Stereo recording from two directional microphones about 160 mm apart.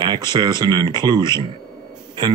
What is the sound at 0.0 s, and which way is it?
Speech, 25° right (ahead or behind).